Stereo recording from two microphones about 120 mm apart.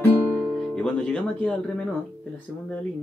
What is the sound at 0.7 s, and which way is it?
Speech, 10° left (ahead or behind).